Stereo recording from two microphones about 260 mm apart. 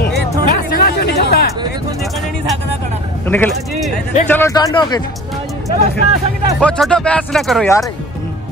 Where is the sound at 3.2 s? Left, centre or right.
Centre.